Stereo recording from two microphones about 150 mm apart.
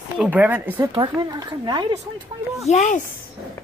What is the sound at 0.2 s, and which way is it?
Speech, 10° right (ahead or behind).